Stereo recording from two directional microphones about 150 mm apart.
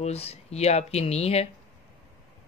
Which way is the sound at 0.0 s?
45° left (ahead or behind).